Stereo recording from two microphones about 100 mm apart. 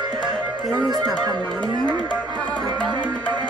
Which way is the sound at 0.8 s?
40° right (ahead or behind).